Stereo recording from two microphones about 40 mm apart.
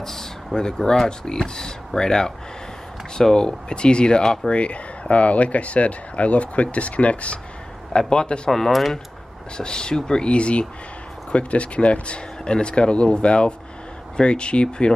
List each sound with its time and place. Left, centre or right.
0.0 s a sound: centre
0.6 s speech: centre
8.1 s speech: left
8.5 s speech: centre
9.6 s speech: left